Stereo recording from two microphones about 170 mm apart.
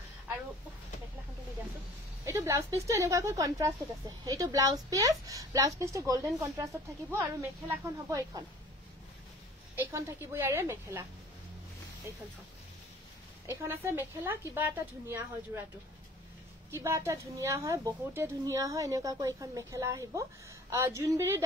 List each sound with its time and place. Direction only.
2.2 s a woman's voice: 20° right (ahead or behind)
9.8 s a woman's voice: 15° right (ahead or behind)
13.5 s a woman's voice: 15° right (ahead or behind)
16.7 s a woman's voice: 15° right (ahead or behind)